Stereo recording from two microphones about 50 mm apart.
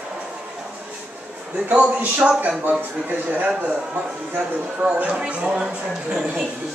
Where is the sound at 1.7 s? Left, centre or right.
Right.